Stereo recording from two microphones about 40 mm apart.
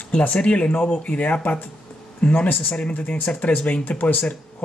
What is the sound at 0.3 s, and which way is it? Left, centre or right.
Speech, left.